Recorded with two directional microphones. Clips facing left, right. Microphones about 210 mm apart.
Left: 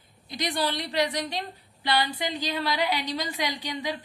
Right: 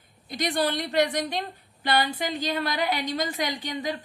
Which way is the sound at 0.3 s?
50° right (ahead or behind).